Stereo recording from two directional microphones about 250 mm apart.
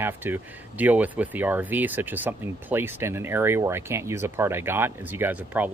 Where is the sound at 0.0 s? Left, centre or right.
Centre.